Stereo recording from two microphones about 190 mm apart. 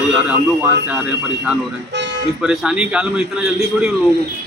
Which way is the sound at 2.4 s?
5° right (ahead or behind).